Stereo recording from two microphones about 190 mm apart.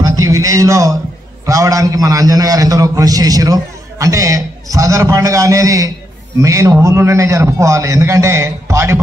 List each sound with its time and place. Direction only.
0.0 s a man's voice: 20° right (ahead or behind)